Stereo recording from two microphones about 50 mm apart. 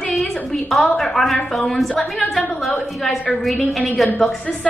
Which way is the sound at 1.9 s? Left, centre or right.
Left.